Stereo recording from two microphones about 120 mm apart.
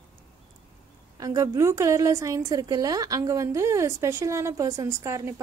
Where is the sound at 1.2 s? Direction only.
30° right (ahead or behind).